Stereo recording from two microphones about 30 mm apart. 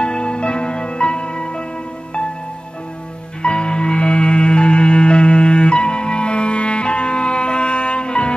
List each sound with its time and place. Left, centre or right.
0.0 s music: left
3.4 s music: left